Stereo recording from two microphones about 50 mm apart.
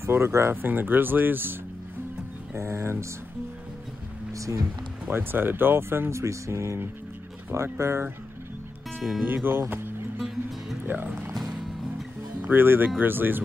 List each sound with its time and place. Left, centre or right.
0.0 s speech: right
0.6 s speech: right
2.5 s speech: right
4.3 s music: right
5.1 s speech: right
7.5 s speech: right
9.2 s speech: right
9.7 s music: right
10.9 s speech: right
12.4 s speech: right